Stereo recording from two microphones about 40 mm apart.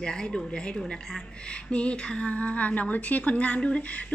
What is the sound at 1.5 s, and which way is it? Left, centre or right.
Speech, left.